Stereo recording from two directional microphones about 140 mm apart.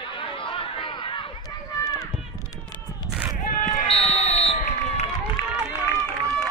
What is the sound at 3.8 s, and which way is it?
Run, 45° left (ahead or behind).